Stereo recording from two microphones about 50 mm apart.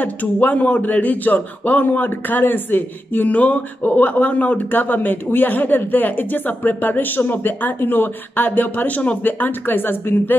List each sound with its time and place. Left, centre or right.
0.0 s speech: left
9.2 s a woman's voice: left